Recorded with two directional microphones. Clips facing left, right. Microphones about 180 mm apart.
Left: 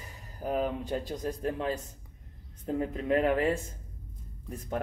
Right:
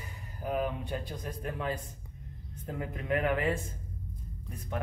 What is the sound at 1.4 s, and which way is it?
Speech, 25° left (ahead or behind).